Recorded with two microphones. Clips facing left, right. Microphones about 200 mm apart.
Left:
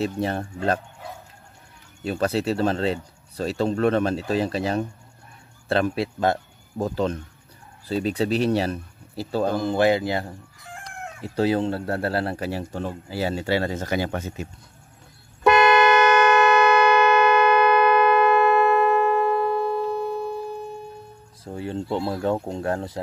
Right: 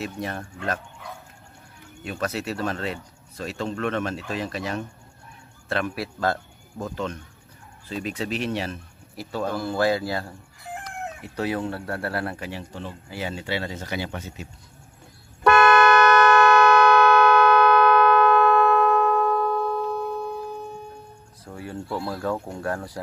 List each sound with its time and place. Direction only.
0.0 s speech: 30° left (ahead or behind)
2.0 s speech: 30° left (ahead or behind)
6.8 s speech: 35° left (ahead or behind)
9.6 s speech: 20° left (ahead or behind); by 14.5 s 50° left (ahead or behind)
15.4 s vehicle horn: 10° left (ahead or behind)
21.5 s speech: 25° left (ahead or behind)